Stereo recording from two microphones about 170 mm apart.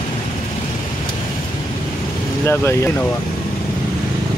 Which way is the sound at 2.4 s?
15° left (ahead or behind).